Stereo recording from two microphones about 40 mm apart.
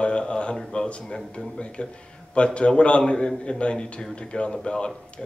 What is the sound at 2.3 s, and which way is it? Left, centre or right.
A man's voice, left.